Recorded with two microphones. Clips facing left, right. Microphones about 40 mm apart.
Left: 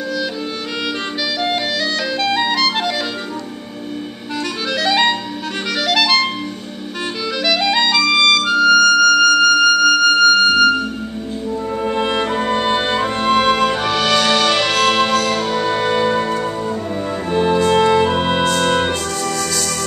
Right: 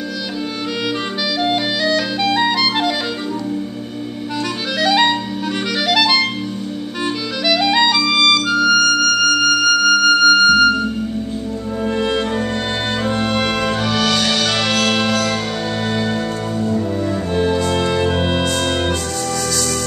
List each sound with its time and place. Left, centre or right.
1.4 s clarinet: centre
4.8 s clarinet: centre
7.4 s music: centre
12.0 s music: centre
17.3 s music: centre